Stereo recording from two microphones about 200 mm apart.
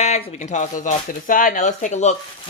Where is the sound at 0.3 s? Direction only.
35° left (ahead or behind).